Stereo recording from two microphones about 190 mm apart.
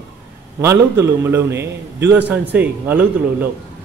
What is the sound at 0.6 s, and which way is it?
A man's voice, 15° right (ahead or behind).